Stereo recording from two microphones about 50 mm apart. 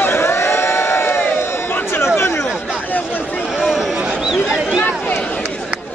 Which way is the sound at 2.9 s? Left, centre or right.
Left.